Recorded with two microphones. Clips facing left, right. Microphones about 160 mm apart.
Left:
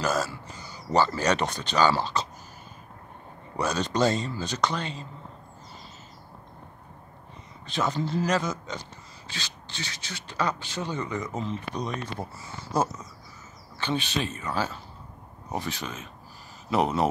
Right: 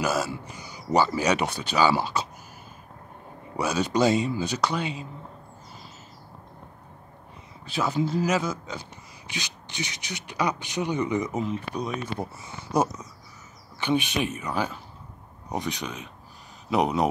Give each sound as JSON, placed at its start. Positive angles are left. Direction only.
{"t": 0.0, "sound": "speech", "side_deg": -10}
{"t": 3.5, "sound": "speech", "side_deg": -10}
{"t": 7.6, "sound": "speech", "side_deg": -5}
{"t": 15.8, "sound": "speech", "side_deg": 0}